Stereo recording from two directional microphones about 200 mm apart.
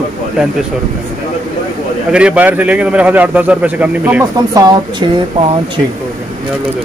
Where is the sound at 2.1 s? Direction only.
5° right (ahead or behind).